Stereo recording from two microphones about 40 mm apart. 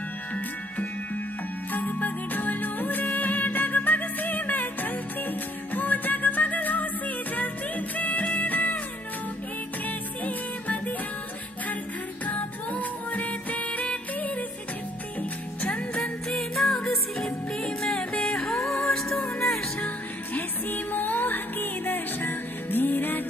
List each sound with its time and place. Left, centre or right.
1.7 s music: left
9.8 s music: left
12.3 s music: left
16.0 s music: centre; by 18.4 s left
18.4 s music: centre
20.3 s music: left